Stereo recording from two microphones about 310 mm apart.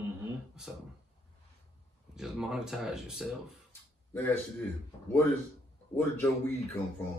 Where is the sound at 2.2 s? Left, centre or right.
Centre.